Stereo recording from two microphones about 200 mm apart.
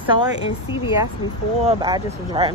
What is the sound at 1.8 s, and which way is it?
Speech, 20° right (ahead or behind).